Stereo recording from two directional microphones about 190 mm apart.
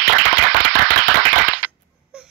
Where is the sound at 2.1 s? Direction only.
5° right (ahead or behind).